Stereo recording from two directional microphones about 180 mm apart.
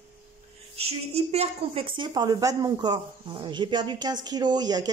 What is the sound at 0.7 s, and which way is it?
A woman's voice, 35° right (ahead or behind).